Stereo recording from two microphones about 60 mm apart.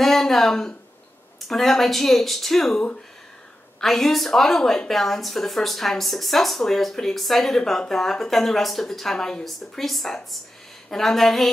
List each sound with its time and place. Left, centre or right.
0.0 s a woman's voice: centre
2.7 s speech: centre
3.8 s a woman's voice: centre